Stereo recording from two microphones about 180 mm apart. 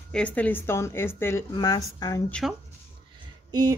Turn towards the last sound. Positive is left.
turn(degrees=-20)  # may be behind; listen again after turning